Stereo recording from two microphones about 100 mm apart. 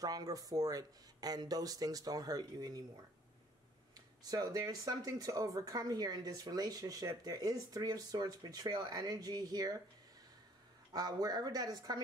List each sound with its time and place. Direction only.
0.0 s speech: 40° right (ahead or behind)
3.9 s speech: 40° right (ahead or behind)
10.9 s speech: 40° right (ahead or behind)